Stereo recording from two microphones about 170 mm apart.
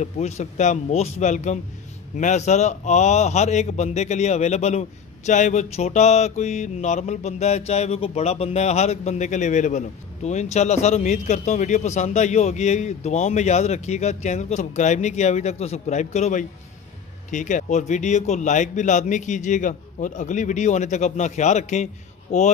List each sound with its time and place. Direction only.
0.0 s a man's voice: 40° left (ahead or behind)